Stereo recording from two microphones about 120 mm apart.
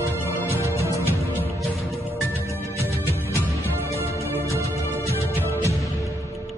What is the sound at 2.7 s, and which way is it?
Music, 15° right (ahead or behind).